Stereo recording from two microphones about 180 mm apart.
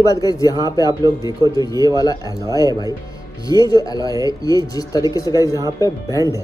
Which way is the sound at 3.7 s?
20° left (ahead or behind).